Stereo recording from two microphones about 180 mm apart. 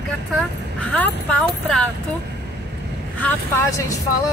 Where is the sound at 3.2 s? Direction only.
15° left (ahead or behind).